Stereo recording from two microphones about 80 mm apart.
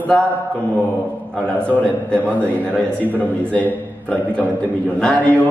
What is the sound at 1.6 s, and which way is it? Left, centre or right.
A man's voice, centre.